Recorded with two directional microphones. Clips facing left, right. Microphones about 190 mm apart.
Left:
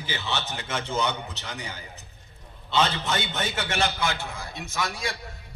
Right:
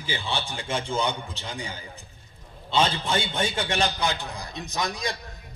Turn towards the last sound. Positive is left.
turn(degrees=-15)  # may be behind; listen again after turning